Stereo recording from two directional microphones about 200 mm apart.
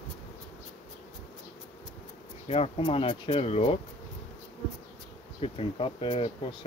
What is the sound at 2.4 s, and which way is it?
Speech, 30° left (ahead or behind).